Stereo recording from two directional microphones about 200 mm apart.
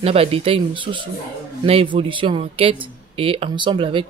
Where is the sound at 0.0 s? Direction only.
30° right (ahead or behind).